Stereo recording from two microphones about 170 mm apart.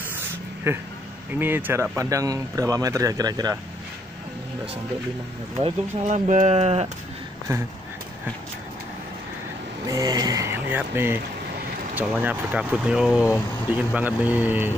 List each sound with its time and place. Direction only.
0.7 s speech: 15° right (ahead or behind)
5.6 s speech: 45° right (ahead or behind)
9.8 s speech: 20° right (ahead or behind)